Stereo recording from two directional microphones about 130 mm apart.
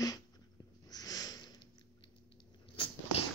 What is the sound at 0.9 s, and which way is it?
Sniff, 30° left (ahead or behind).